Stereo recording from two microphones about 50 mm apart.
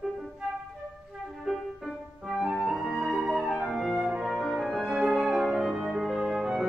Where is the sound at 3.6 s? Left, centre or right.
Centre.